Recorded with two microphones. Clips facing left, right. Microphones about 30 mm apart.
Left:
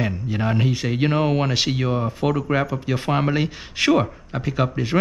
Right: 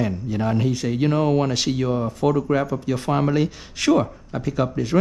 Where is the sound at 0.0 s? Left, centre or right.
Left.